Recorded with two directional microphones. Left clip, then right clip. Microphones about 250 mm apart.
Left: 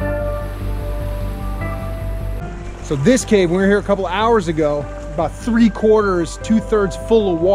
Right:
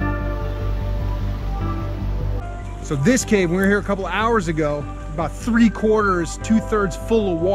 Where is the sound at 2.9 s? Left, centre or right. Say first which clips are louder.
Left 4 dB; centre.